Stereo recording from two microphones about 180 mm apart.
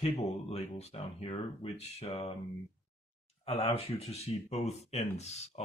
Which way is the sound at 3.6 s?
30° left (ahead or behind).